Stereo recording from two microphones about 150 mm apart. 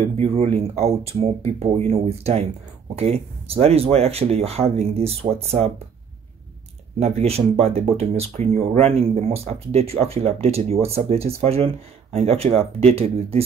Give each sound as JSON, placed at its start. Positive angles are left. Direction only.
{"t": 0.7, "sound": "speech", "side_deg": -45}
{"t": 7.0, "sound": "speech", "side_deg": -45}